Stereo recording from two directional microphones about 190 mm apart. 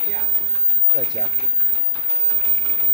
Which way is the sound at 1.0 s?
25° right (ahead or behind).